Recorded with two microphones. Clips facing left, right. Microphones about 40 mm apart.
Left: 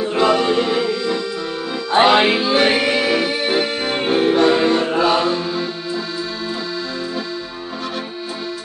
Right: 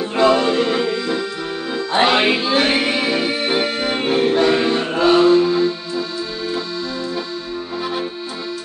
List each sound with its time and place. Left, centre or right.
0.1 s music: centre
0.9 s accordion: centre
1.7 s music: centre
2.8 s accordion: centre
4.3 s music: centre